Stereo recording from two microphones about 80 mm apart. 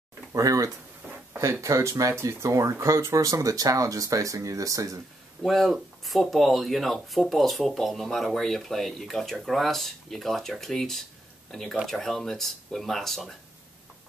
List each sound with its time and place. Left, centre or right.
0.3 s speech: right
5.4 s speech: centre